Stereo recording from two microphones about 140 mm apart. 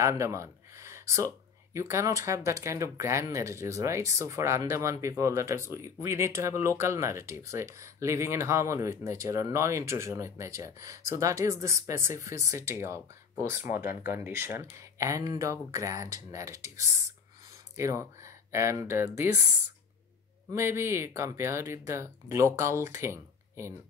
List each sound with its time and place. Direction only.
0.0 s speech: 20° right (ahead or behind)
20.5 s speech: 20° right (ahead or behind)